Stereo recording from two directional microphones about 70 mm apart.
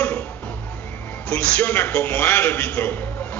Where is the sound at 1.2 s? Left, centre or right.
Centre.